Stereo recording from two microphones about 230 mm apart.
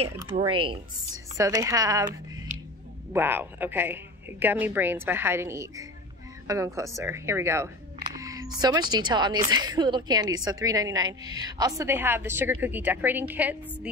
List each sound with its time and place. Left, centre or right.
0.0 s speech: centre
3.1 s speech: centre